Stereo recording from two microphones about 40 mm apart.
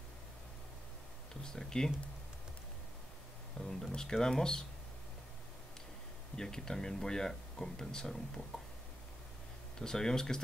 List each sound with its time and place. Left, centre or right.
1.4 s speech: centre
3.6 s speech: centre
6.3 s speech: centre
9.8 s speech: centre